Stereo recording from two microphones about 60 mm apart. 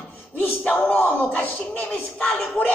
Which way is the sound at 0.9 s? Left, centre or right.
Left.